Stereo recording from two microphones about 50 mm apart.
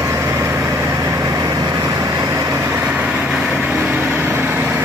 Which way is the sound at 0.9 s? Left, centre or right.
Right.